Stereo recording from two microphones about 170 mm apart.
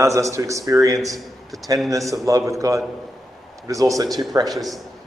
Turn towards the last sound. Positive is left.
turn(degrees=0)  # may be behind; listen again after turning